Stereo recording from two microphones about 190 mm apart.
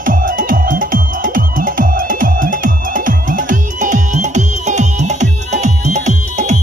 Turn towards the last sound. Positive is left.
turn(degrees=-40)  # may be behind; listen again after turning